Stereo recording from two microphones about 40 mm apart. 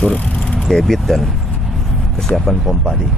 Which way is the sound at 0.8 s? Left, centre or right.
Centre.